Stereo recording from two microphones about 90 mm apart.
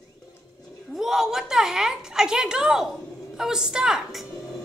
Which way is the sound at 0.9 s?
5° right (ahead or behind).